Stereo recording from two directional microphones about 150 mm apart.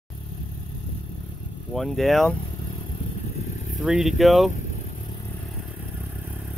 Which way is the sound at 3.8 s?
5° right (ahead or behind).